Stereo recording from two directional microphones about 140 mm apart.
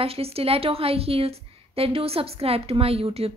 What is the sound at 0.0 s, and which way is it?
A woman's voice, 45° right (ahead or behind).